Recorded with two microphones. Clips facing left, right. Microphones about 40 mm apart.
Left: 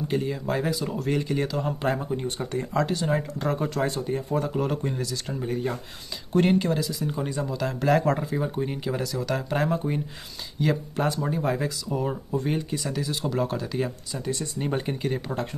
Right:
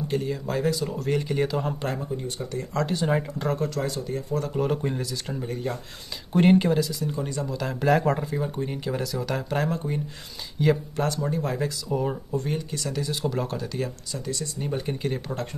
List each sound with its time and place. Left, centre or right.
0.1 s speech: centre
2.9 s speech: centre
3.5 s speech: centre
3.8 s speech: left
4.6 s speech: centre
6.3 s speech: centre
7.1 s speech: centre
7.5 s speech: centre
10.6 s speech: centre
11.1 s speech: centre
14.4 s speech: left
14.9 s speech: centre